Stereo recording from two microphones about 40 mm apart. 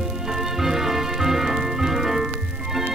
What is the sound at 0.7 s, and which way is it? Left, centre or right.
Music, centre.